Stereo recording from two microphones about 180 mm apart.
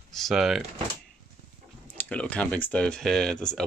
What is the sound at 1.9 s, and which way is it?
Speech, 5° left (ahead or behind).